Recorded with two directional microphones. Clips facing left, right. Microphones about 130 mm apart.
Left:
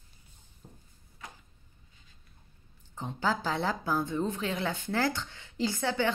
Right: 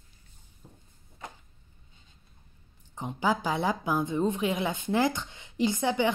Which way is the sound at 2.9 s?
15° right (ahead or behind).